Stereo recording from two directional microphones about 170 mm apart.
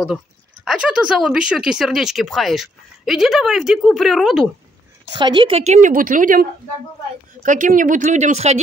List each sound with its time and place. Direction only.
0.7 s speech: 5° right (ahead or behind)
5.1 s a woman's voice: 25° right (ahead or behind); by 6.4 s 50° right (ahead or behind)
7.4 s a woman's voice: 50° right (ahead or behind)